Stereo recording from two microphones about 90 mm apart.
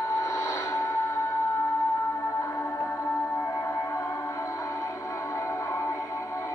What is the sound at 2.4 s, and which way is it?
Music, 35° left (ahead or behind).